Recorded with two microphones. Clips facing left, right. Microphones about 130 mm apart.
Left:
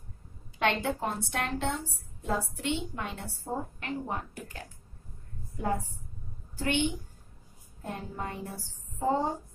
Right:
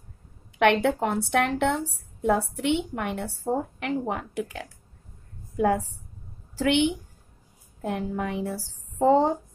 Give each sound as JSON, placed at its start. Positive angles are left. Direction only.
{"t": 0.6, "sound": "a woman's voice", "side_deg": -65}